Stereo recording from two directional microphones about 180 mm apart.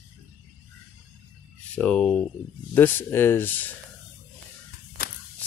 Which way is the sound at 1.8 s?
5° left (ahead or behind).